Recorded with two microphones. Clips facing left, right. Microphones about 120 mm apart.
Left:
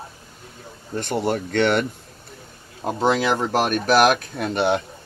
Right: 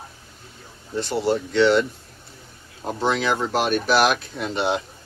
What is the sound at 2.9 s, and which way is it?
Speech, 40° left (ahead or behind).